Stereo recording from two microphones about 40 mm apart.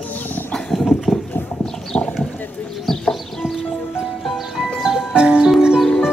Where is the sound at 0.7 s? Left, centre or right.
Centre.